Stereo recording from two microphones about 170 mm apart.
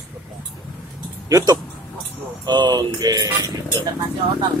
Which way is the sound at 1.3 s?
20° right (ahead or behind).